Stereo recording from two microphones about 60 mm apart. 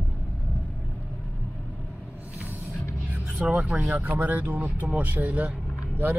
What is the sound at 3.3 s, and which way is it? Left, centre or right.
Vehicle, centre.